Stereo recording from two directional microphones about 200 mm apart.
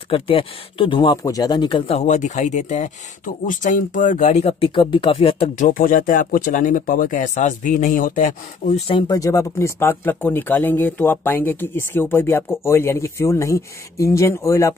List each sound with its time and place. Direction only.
0.1 s speech: 25° left (ahead or behind)
5.7 s speech: 45° left (ahead or behind); by 14.8 s 15° left (ahead or behind)